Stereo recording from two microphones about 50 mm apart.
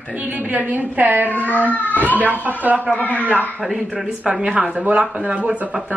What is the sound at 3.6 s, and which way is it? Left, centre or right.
Speech, centre.